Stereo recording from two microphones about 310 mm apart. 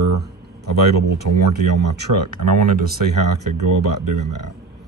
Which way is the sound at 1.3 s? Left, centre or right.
Right.